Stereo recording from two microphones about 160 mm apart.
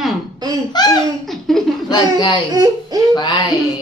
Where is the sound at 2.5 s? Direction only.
25° right (ahead or behind).